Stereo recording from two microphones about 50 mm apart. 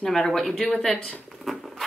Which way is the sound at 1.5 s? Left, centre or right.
Centre.